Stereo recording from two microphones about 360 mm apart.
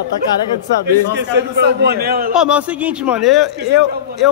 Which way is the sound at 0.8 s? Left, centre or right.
Right.